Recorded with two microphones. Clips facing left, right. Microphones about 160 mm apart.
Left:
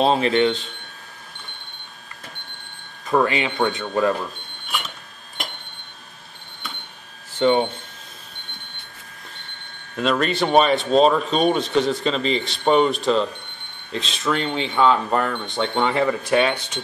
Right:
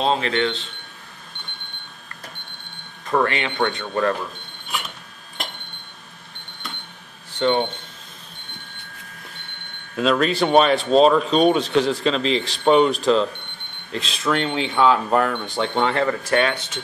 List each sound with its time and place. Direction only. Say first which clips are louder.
0.0 s speech: left 3 dB; 15° left (ahead or behind)
3.1 s speech: left 1 dB; 10° left (ahead or behind)
7.3 s speech: left 2 dB; 5° left (ahead or behind)
9.9 s speech: right 2 dB; centre (ahead or behind); by 16.8 s 15° left (ahead or behind)